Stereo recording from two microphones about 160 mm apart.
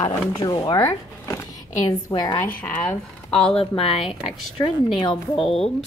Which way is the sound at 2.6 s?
10° left (ahead or behind).